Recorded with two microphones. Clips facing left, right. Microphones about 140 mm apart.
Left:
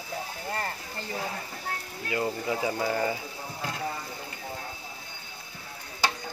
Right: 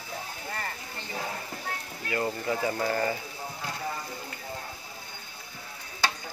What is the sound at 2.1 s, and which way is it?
Speech, 15° left (ahead or behind).